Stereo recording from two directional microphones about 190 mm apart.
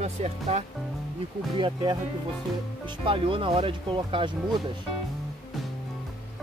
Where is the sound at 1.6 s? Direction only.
25° right (ahead or behind).